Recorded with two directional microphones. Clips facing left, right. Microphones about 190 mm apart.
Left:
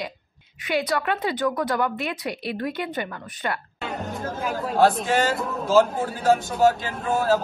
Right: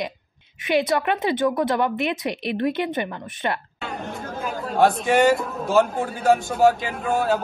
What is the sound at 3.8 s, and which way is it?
Speech, centre (ahead or behind).